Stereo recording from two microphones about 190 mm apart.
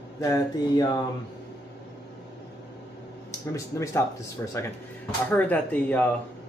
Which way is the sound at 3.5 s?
15° left (ahead or behind).